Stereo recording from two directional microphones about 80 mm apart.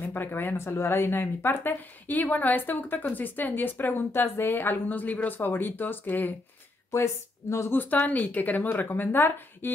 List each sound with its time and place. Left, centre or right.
0.0 s speech: left
6.9 s speech: left
7.8 s speech: centre